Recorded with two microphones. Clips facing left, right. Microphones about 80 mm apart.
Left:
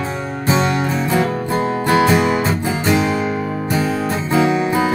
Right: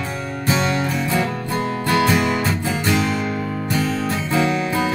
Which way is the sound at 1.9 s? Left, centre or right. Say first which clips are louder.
Left 3 dB; left.